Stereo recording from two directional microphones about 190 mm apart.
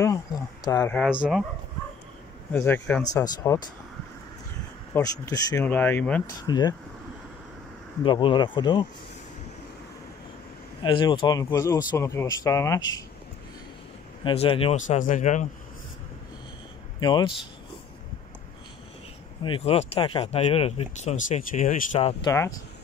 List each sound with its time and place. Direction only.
0.0 s speech: 15° left (ahead or behind)
2.5 s speech: 10° left (ahead or behind)
4.9 s speech: 15° left (ahead or behind)
6.4 s speech: 20° left (ahead or behind)
8.0 s speech: 25° left (ahead or behind)
10.8 s speech: 25° left (ahead or behind)
14.2 s speech: 30° left (ahead or behind)
17.0 s speech: 25° left (ahead or behind)
19.4 s speech: 30° left (ahead or behind)
22.2 s speech: 15° left (ahead or behind)